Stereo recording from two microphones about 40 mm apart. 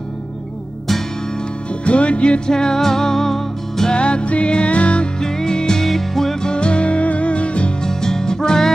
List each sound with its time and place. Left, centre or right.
1.9 s music: left
2.5 s music: centre
3.9 s music: left
5.2 s music: centre
5.9 s music: centre
6.5 s music: left
7.8 s music: centre